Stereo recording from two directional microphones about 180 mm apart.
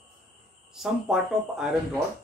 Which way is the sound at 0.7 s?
Centre (ahead or behind).